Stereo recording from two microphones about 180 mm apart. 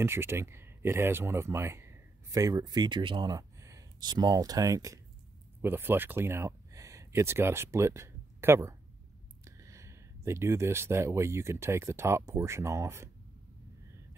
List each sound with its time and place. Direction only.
0.0 s speech: 15° right (ahead or behind)